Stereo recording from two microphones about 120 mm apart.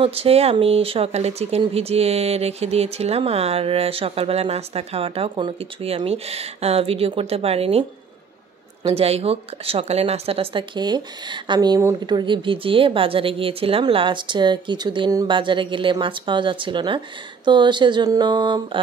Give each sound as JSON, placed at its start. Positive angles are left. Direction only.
{"t": 0.0, "sound": "speech", "side_deg": -55}
{"t": 8.8, "sound": "a woman's voice", "side_deg": -55}